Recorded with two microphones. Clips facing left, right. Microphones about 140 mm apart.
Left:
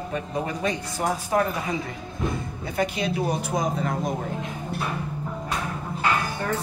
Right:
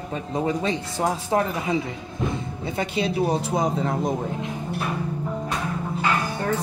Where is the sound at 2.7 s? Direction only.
30° right (ahead or behind).